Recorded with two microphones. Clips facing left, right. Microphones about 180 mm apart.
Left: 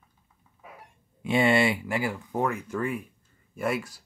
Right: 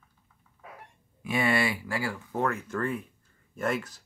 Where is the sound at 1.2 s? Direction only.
25° left (ahead or behind).